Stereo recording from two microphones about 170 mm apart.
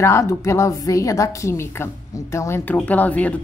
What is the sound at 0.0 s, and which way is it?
A woman's voice, 15° left (ahead or behind).